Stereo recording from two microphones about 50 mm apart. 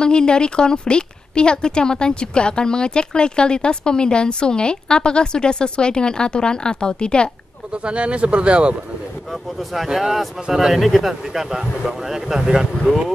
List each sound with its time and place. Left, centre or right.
0.0 s a woman's voice: centre
7.7 s speech: right
9.3 s a man's voice: centre